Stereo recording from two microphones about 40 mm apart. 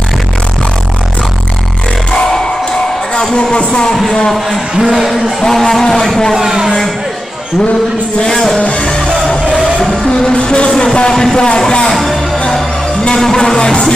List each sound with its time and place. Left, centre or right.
3.2 s speech: left
4.1 s music: centre
4.8 s speech: centre
5.4 s music: centre
6.3 s speech: centre
8.2 s music: centre
8.5 s music: left
10.3 s speech: left
11.9 s music: centre
13.2 s music: centre